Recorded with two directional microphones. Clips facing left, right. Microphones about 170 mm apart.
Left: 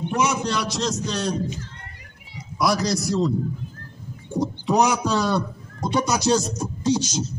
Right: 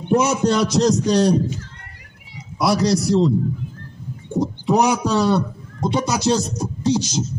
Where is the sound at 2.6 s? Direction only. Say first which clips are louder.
Right 4 dB; 30° right (ahead or behind).